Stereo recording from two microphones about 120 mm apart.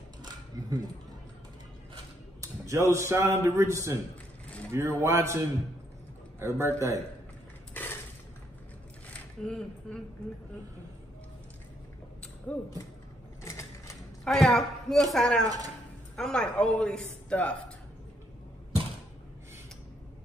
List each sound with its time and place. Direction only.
0.2 s a sound: 30° right (ahead or behind)
2.4 s a man's voice: 25° right (ahead or behind)
7.7 s dishes: 15° left (ahead or behind)
9.1 s speech: 5° left (ahead or behind)
12.5 s a man's voice: 10° left (ahead or behind)
13.4 s mechanisms: 25° left (ahead or behind)
14.2 s a man's voice: 5° left (ahead or behind)
15.4 s speech: 30° right (ahead or behind)
16.2 s a man's voice: 5° left (ahead or behind)